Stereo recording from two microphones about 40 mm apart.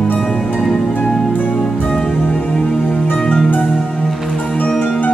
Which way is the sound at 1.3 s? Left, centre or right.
Left.